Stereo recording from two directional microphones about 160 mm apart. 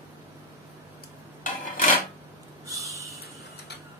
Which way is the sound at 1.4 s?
60° left (ahead or behind).